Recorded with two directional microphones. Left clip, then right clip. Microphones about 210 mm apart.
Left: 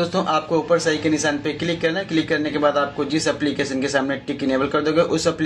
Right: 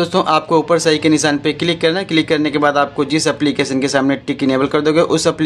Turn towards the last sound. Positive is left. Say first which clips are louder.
# right 5 dB
turn(degrees=-40)  # may be behind; listen again after turning